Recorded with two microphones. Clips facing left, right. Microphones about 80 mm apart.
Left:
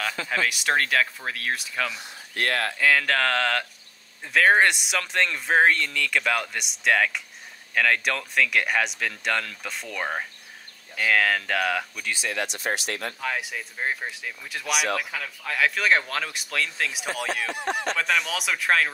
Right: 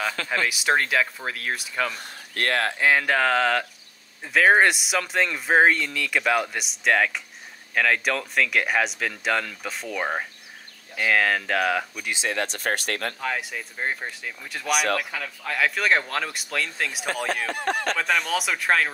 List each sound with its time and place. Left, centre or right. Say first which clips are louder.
0.4 s speech: right 1 dB; centre
2.0 s speech: even; right
2.8 s a sound: right 1 dB; centre
4.2 s speech: right 1 dB; centre
12.3 s speech: right 2 dB; right
13.2 s speech: right 1 dB; centre
17.5 s speech: right 2 dB; right
17.9 s speech: right 2 dB; centre